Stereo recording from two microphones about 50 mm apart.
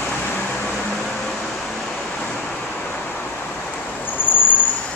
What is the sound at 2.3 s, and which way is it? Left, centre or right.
Vehicle, left.